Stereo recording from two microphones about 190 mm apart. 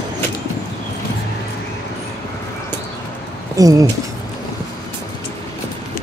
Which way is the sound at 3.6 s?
20° right (ahead or behind).